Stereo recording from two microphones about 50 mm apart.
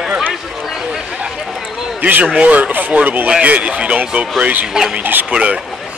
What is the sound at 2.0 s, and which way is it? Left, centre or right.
A man's voice, right.